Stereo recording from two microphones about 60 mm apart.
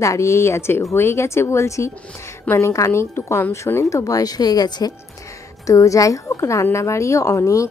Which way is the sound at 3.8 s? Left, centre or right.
Left.